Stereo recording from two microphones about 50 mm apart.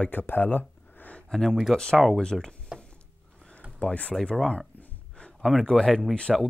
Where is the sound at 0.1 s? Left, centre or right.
Left.